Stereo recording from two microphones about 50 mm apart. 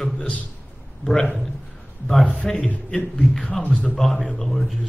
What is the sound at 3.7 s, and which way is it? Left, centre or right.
Speech, centre.